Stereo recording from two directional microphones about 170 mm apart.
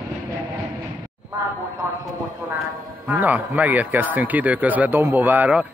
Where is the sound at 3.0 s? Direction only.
10° right (ahead or behind).